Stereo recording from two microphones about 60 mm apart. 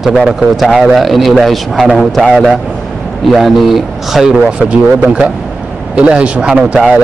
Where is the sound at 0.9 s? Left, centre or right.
Centre.